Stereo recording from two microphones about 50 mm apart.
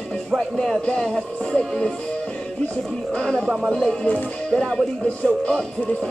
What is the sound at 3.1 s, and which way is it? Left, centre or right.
Speech, centre.